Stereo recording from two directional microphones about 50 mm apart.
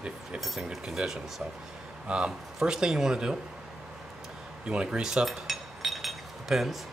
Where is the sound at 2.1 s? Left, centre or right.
Centre.